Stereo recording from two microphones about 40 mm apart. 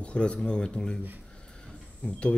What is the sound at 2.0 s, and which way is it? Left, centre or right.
Speech, left.